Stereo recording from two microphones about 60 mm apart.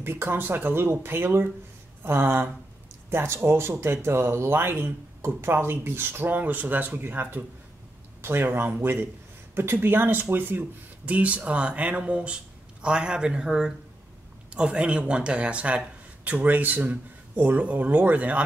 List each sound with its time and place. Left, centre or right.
0.0 s speech: right